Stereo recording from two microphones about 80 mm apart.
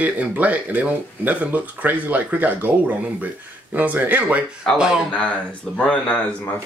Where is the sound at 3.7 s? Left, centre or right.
Right.